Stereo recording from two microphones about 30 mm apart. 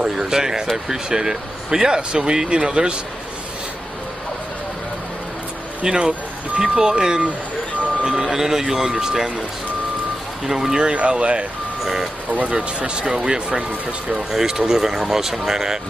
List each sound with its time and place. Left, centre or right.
0.0 s speech: right
5.9 s speech: right
8.3 s speech: centre
10.4 s speech: centre
10.8 s speech: right
11.8 s speech: centre
12.4 s speech: right; by 15.8 s centre